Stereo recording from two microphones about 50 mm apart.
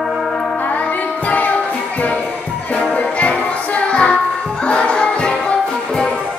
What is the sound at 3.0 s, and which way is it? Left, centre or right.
Music, left.